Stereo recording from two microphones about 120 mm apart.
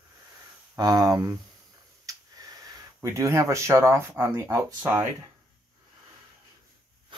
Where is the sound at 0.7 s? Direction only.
30° right (ahead or behind).